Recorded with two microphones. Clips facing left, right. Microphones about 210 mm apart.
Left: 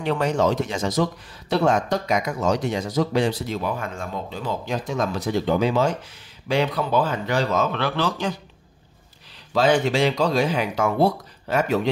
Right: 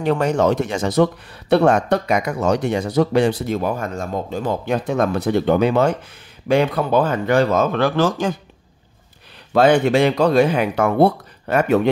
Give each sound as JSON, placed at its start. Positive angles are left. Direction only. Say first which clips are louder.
{"t": 0.0, "sound": "a man's voice", "louder": "right 4 dB", "side_deg": -45}
{"t": 9.5, "sound": "speech", "louder": "right 5 dB", "side_deg": -55}